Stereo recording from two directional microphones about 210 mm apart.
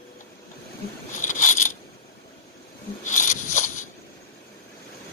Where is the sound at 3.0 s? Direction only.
35° left (ahead or behind).